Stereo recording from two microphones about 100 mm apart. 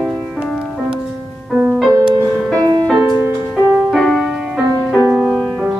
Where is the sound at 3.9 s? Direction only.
5° left (ahead or behind).